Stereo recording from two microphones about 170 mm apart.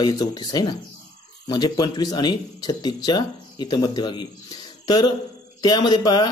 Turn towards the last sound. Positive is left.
turn(degrees=25)  # may be behind; listen again after turning